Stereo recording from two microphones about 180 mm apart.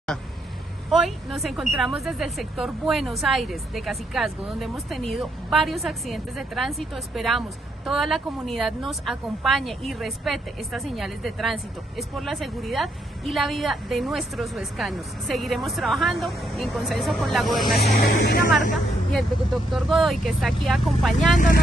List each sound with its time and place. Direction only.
0.8 s a woman's voice: centre (ahead or behind)
17.9 s speech: 60° left (ahead or behind)
19.1 s a woman's voice: centre (ahead or behind)